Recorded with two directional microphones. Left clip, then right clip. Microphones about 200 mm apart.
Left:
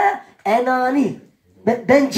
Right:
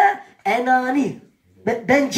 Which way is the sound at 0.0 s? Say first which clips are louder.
Right 1 dB; 40° right (ahead or behind).